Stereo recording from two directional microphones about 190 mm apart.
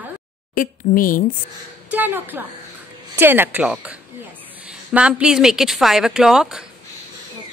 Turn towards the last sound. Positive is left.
turn(degrees=-5)  # may be behind; listen again after turning